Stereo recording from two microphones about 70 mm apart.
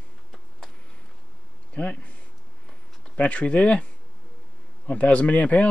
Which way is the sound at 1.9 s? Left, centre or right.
Centre.